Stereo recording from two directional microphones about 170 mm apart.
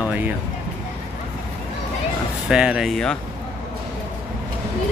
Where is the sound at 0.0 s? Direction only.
10° right (ahead or behind).